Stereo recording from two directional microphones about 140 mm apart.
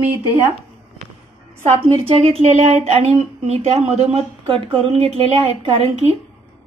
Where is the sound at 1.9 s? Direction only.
40° right (ahead or behind).